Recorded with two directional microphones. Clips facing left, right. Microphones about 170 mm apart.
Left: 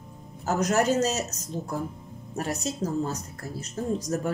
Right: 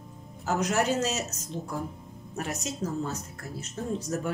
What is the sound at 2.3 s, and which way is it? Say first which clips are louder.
Speech: left 4 dB; 35° left (ahead or behind).